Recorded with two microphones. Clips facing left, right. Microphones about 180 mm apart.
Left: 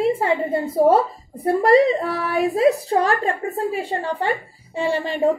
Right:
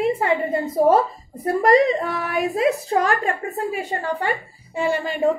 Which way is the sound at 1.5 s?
30° left (ahead or behind).